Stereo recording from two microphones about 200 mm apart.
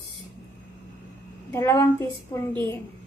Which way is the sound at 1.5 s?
15° left (ahead or behind).